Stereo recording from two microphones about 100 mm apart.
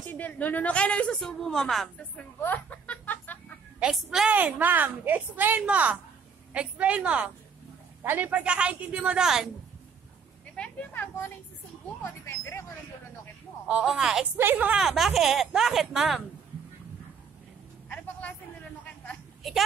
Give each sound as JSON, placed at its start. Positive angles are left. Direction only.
{"t": 0.1, "sound": "a woman's voice", "side_deg": 15}
{"t": 2.0, "sound": "speech", "side_deg": 15}
{"t": 3.8, "sound": "a woman's voice", "side_deg": -10}
{"t": 10.5, "sound": "a sound", "side_deg": 10}
{"t": 10.9, "sound": "speech", "side_deg": 20}
{"t": 13.7, "sound": "speech", "side_deg": -10}
{"t": 14.3, "sound": "a woman's voice", "side_deg": -20}
{"t": 14.8, "sound": "speech", "side_deg": -5}
{"t": 17.8, "sound": "a sound", "side_deg": 15}
{"t": 19.4, "sound": "a woman's voice", "side_deg": 0}